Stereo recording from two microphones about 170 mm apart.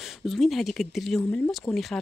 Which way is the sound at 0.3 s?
Centre (ahead or behind).